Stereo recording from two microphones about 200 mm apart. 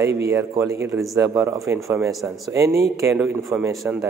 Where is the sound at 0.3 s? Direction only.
15° right (ahead or behind).